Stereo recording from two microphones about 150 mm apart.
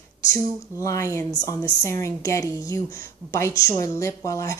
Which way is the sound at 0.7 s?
20° left (ahead or behind).